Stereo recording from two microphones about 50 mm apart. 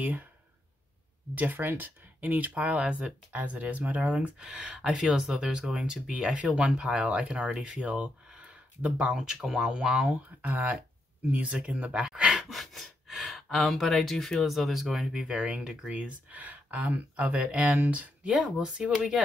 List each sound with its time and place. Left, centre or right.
1.3 s speech: right
9.1 s speech: centre
10.0 s speech: right
11.5 s speech: right
12.3 s speech: centre
15.2 s speech: centre
18.3 s speech: centre